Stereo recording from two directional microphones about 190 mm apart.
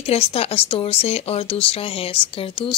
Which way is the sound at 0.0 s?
30° left (ahead or behind).